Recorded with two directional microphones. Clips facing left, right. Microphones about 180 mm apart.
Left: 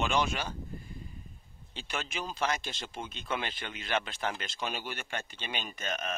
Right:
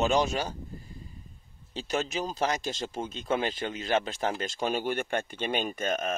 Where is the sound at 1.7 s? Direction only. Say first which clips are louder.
Right 8 dB; 40° right (ahead or behind).